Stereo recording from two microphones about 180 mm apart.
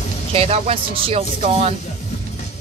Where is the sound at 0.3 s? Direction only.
35° right (ahead or behind).